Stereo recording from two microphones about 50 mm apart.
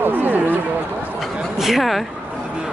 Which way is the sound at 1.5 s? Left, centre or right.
Centre.